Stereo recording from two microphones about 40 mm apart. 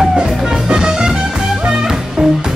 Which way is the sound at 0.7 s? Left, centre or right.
Centre.